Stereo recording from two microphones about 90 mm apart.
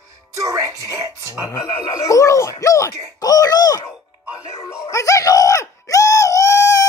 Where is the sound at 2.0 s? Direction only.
35° left (ahead or behind).